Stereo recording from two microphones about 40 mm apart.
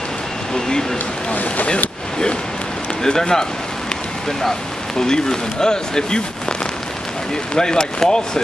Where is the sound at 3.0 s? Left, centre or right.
Centre.